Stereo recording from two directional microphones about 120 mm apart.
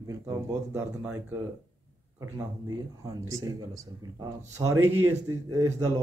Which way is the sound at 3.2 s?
30° right (ahead or behind).